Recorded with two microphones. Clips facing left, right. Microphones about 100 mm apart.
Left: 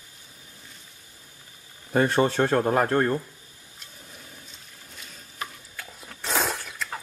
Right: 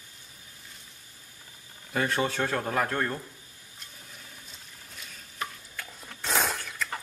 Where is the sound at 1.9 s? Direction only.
35° left (ahead or behind).